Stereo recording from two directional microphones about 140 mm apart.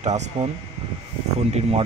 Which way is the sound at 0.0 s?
50° right (ahead or behind).